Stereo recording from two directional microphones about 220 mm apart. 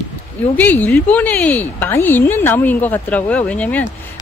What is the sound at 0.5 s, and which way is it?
A woman's voice, 10° left (ahead or behind).